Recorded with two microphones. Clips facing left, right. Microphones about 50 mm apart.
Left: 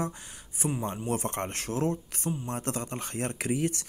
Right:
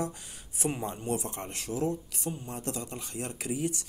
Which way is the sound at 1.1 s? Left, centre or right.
Left.